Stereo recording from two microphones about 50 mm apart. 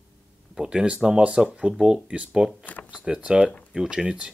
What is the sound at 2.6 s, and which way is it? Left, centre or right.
Speech, left.